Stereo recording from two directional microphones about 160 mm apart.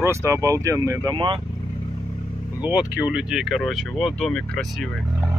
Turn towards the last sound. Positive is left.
turn(degrees=5)  # may be behind; listen again after turning